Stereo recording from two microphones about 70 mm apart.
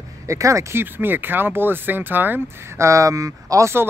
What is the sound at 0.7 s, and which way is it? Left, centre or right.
Speech, right.